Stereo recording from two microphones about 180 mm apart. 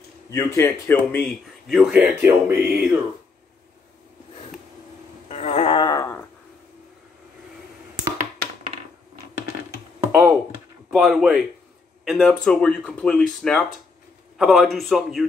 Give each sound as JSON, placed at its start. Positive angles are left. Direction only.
{"t": 0.6, "sound": "speech", "side_deg": 15}
{"t": 1.7, "sound": "speech", "side_deg": -5}
{"t": 5.3, "sound": "a sound", "side_deg": 35}
{"t": 9.9, "sound": "computer keyboard", "side_deg": -5}
{"t": 10.9, "sound": "speech", "side_deg": 0}